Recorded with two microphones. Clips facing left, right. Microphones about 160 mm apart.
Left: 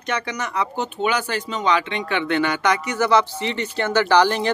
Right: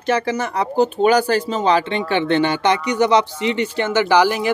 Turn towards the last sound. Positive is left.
turn(degrees=-10)  # may be behind; listen again after turning